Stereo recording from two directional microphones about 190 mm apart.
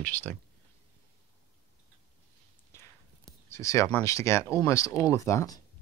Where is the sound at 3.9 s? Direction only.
15° left (ahead or behind).